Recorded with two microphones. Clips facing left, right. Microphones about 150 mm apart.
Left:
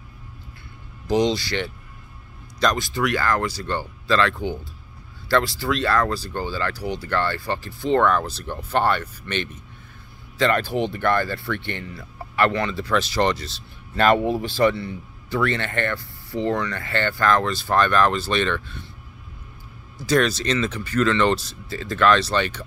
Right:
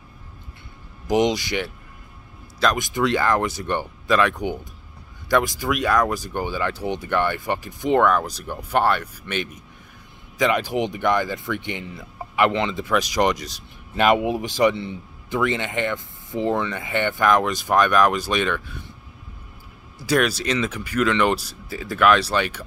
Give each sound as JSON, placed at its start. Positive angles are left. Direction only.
{"t": 1.0, "sound": "speech", "side_deg": -15}
{"t": 2.8, "sound": "speech", "side_deg": -20}
{"t": 20.0, "sound": "speech", "side_deg": -10}